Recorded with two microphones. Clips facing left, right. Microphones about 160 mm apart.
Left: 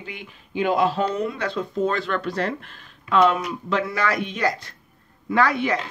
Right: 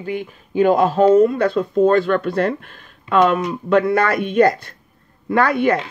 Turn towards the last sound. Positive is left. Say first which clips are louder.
# right 5 dB
turn(degrees=-55)  # may be behind; listen again after turning